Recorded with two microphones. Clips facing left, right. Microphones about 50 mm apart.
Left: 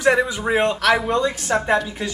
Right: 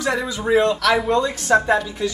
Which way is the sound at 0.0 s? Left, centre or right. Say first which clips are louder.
Left 4 dB; left.